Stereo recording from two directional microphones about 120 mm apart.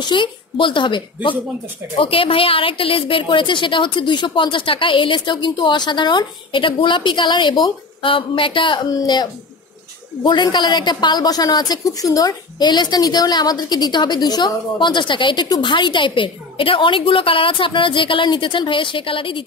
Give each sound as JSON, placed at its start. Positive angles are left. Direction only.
{"t": 0.1, "sound": "a woman's voice", "side_deg": 45}